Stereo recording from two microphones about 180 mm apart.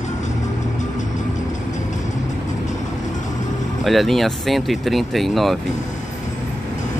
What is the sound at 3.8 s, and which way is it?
Speech, centre (ahead or behind).